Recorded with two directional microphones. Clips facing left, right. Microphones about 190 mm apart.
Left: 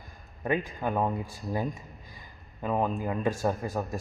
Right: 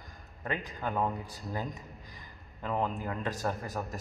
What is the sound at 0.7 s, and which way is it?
Speech, 25° left (ahead or behind).